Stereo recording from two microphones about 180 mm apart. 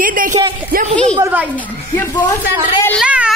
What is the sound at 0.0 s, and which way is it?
Speech, 50° right (ahead or behind).